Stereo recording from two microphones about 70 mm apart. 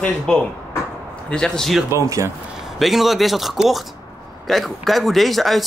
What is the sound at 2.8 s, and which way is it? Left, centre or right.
Speech, centre.